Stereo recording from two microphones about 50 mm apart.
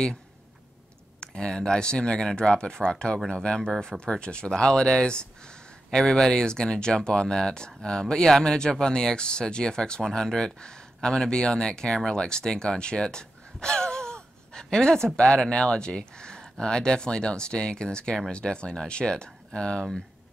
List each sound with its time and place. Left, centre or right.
1.2 s speech: centre